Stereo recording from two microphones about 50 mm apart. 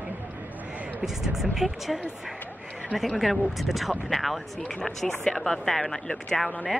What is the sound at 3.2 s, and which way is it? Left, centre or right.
Speech, centre.